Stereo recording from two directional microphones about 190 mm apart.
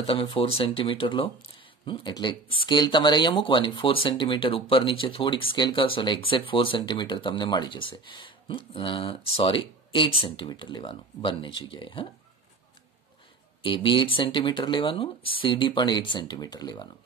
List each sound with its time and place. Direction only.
0.0 s speech: 30° left (ahead or behind)
13.6 s speech: 25° left (ahead or behind)